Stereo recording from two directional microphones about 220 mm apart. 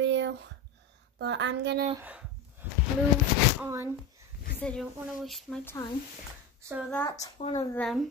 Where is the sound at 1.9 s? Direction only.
5° right (ahead or behind).